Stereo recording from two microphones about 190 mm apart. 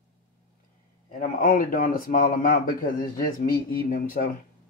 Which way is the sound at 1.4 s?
45° left (ahead or behind).